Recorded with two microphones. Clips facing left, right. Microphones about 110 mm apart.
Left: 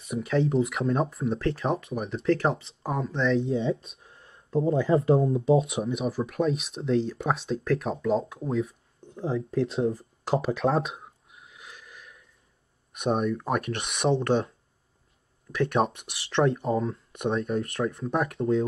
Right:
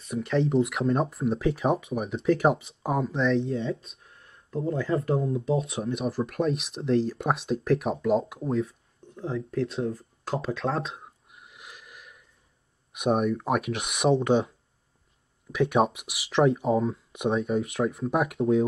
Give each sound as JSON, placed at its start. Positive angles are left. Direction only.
{"t": 0.1, "sound": "speech", "side_deg": 0}
{"t": 4.0, "sound": "speech", "side_deg": 25}
{"t": 5.8, "sound": "speech", "side_deg": 0}
{"t": 8.6, "sound": "speech", "side_deg": 25}
{"t": 10.9, "sound": "a sound", "side_deg": 0}
{"t": 12.9, "sound": "speech", "side_deg": -5}
{"t": 15.5, "sound": "speech", "side_deg": -5}